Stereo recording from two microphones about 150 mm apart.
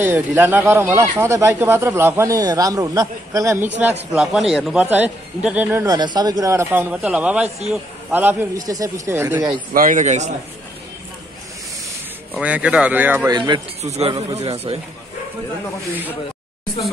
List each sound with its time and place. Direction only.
0.0 s speech: 15° right (ahead or behind)
4.1 s a man's voice: 5° right (ahead or behind)
5.9 s a man's voice: 30° right (ahead or behind); by 8.5 s 15° right (ahead or behind)
8.5 s speech: 25° right (ahead or behind)
9.8 s a man's voice: 60° right (ahead or behind)
12.4 s a man's voice: 10° right (ahead or behind)
13.3 s a man's voice: 30° right (ahead or behind)
13.8 s a man's voice: 45° right (ahead or behind)